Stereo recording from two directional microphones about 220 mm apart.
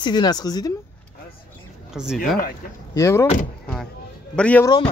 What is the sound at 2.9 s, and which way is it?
Speech, 15° left (ahead or behind).